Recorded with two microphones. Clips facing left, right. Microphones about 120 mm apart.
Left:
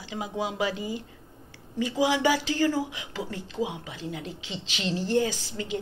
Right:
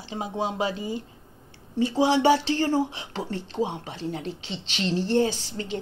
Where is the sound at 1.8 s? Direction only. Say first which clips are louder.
Right 4 dB; 30° right (ahead or behind).